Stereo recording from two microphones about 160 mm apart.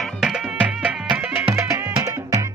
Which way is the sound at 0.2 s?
5° right (ahead or behind).